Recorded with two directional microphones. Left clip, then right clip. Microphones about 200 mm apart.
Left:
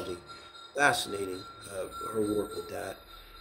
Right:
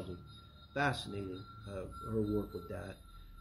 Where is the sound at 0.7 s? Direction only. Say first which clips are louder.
Left 9 dB; 10° left (ahead or behind).